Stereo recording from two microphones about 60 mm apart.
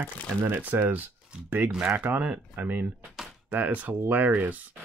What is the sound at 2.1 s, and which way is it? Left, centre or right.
Speech, right.